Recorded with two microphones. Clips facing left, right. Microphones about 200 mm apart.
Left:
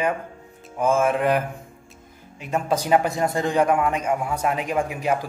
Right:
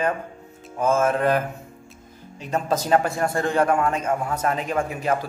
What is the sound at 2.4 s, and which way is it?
A man's voice, 10° left (ahead or behind).